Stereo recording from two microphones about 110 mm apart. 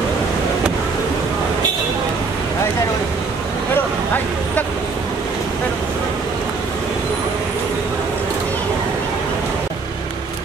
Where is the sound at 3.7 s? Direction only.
15° left (ahead or behind).